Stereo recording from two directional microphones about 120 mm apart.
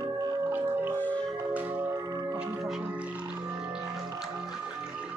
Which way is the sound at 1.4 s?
15° right (ahead or behind).